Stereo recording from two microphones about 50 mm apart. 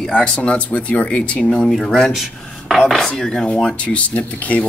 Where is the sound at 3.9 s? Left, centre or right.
Left.